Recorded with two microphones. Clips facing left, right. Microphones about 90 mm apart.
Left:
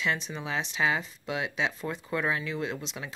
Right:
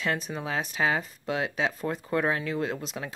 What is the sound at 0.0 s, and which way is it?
Speech, 45° right (ahead or behind).